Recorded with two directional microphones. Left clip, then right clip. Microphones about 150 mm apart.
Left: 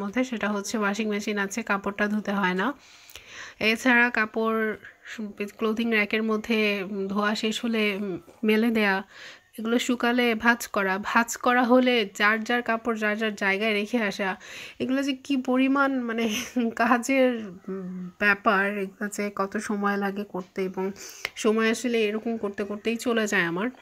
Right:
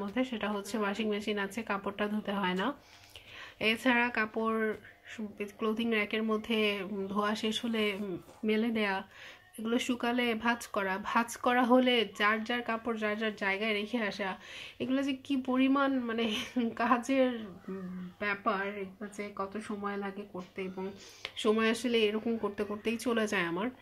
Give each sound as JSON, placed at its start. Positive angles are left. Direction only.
{"t": 0.0, "sound": "speech", "side_deg": 35}
{"t": 8.5, "sound": "speech", "side_deg": 45}
{"t": 18.2, "sound": "speech", "side_deg": 55}
{"t": 20.7, "sound": "speech", "side_deg": 40}